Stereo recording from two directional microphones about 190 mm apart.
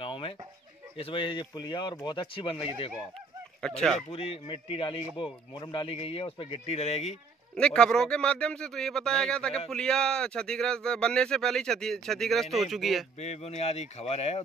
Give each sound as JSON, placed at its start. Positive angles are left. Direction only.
{"t": 0.0, "sound": "chicken", "side_deg": 30}
{"t": 0.9, "sound": "speech", "side_deg": 30}
{"t": 3.6, "sound": "speech", "side_deg": 5}
{"t": 4.1, "sound": "speech", "side_deg": 30}
{"t": 7.5, "sound": "speech", "side_deg": 5}
{"t": 13.2, "sound": "speech", "side_deg": 35}